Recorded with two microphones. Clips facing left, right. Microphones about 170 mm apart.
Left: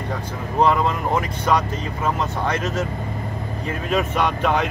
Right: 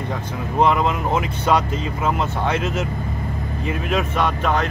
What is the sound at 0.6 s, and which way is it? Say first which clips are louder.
Speech: even; 15° right (ahead or behind).